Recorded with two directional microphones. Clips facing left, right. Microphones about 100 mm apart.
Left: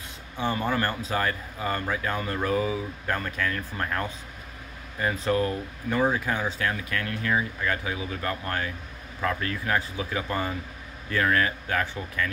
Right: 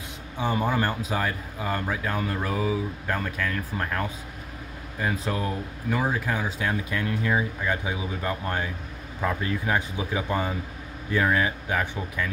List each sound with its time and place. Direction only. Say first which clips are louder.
0.4 s speech: right 1 dB; 10° right (ahead or behind)
6.6 s speech: right 1 dB; 20° right (ahead or behind)